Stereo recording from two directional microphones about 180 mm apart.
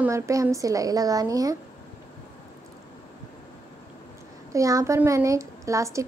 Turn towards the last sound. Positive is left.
turn(degrees=-15)  # may be behind; listen again after turning